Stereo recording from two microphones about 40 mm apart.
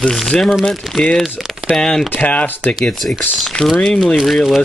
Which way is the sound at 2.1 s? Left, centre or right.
Left.